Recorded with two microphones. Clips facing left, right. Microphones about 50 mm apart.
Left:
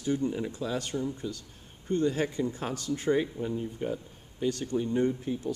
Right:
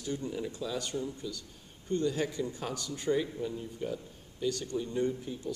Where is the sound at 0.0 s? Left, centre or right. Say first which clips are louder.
Left 6 dB; left.